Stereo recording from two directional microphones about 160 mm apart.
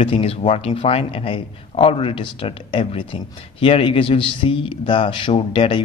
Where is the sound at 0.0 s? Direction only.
35° left (ahead or behind).